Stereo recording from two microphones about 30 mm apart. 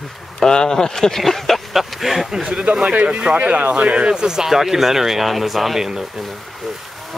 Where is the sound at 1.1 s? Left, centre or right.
Centre.